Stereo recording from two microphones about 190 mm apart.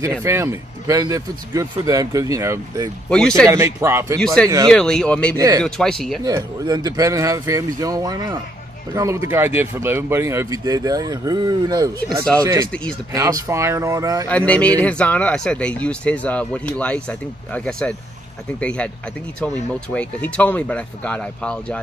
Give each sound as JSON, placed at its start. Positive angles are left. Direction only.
{"t": 0.2, "sound": "speech", "side_deg": -15}
{"t": 3.1, "sound": "speech", "side_deg": 5}
{"t": 3.4, "sound": "speech", "side_deg": -15}
{"t": 4.2, "sound": "speech", "side_deg": 5}
{"t": 5.3, "sound": "speech", "side_deg": -20}
{"t": 5.6, "sound": "speech", "side_deg": 5}
{"t": 6.2, "sound": "speech", "side_deg": -20}
{"t": 14.3, "sound": "speech", "side_deg": 5}